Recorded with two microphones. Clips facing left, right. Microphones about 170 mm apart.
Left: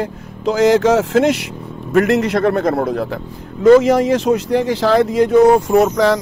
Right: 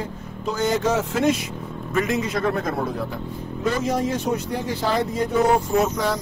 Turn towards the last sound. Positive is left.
turn(degrees=85)